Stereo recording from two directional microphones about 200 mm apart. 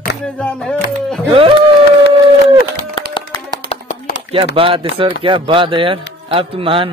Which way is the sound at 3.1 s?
25° left (ahead or behind).